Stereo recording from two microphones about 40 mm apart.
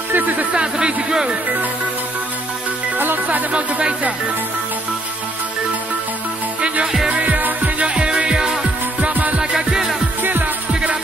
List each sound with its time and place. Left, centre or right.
0.1 s speech: right
0.6 s speech: right
3.5 s speech: right
7.1 s music: right
7.8 s music: right
9.1 s music: right
9.4 s music: centre
10.2 s music: right
10.7 s music: right